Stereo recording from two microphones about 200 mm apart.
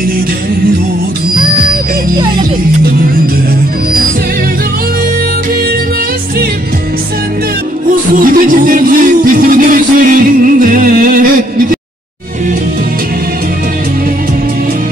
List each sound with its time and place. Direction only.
7.9 s music: 45° right (ahead or behind)